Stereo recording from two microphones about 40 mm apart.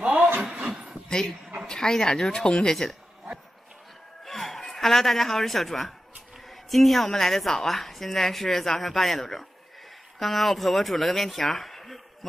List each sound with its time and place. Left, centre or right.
0.0 s a sound: right
1.7 s speech: centre
4.2 s a woman's voice: centre